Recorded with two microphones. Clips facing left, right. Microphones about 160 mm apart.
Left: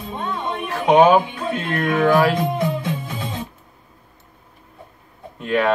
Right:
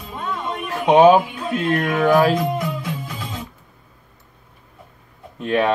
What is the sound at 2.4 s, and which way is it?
Music, 25° left (ahead or behind).